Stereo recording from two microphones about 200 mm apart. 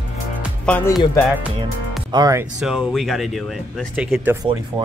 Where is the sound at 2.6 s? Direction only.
Centre (ahead or behind).